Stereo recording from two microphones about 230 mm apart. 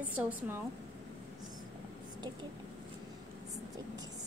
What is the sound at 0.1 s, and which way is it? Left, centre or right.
Speech, centre.